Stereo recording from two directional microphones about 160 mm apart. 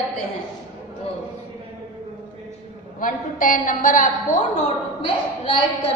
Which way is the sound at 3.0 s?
60° left (ahead or behind).